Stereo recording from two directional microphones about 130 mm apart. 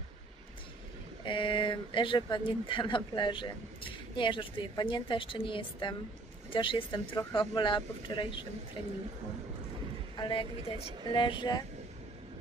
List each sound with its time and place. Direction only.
1.2 s speech: 40° left (ahead or behind)
10.1 s speech: 35° left (ahead or behind)